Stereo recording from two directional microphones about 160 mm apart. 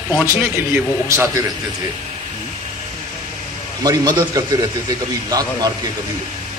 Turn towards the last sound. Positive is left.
turn(degrees=-25)  # may be behind; listen again after turning